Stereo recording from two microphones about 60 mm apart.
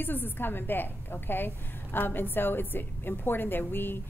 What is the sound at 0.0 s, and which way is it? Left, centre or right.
A woman's voice, left.